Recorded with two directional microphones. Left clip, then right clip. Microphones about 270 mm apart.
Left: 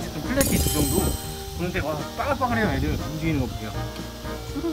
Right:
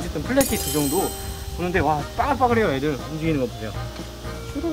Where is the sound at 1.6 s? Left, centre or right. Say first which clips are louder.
Right 7 dB; centre.